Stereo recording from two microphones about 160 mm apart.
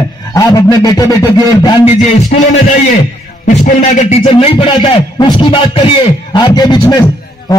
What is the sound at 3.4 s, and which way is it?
A man's voice, 45° left (ahead or behind).